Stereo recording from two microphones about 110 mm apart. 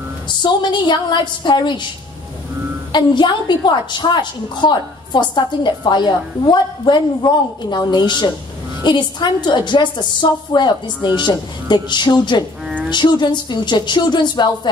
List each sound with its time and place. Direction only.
0.4 s a woman's voice: 45° left (ahead or behind)
2.9 s a woman's voice: 45° left (ahead or behind)